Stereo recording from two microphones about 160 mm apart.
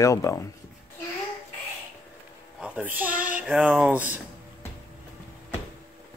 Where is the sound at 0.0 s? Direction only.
20° left (ahead or behind).